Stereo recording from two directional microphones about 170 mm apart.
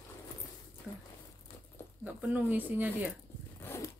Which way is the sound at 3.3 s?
15° left (ahead or behind).